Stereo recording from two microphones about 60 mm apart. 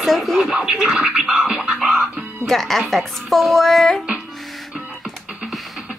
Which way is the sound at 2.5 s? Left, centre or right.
Centre.